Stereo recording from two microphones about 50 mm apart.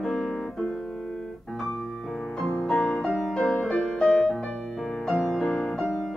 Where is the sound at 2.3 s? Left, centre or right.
Centre.